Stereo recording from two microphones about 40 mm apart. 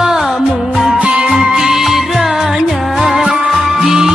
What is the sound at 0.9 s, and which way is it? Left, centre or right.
Music, right.